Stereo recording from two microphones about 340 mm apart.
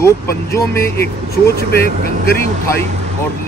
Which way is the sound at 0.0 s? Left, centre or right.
Centre.